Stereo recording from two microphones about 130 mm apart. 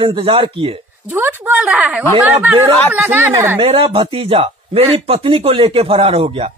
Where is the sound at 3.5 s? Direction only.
45° right (ahead or behind).